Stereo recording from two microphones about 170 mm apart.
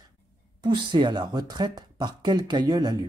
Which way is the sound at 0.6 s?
30° right (ahead or behind).